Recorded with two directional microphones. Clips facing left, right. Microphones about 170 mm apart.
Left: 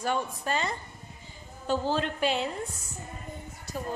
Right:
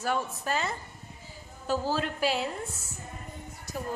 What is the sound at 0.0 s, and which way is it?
A woman's voice, 5° right (ahead or behind).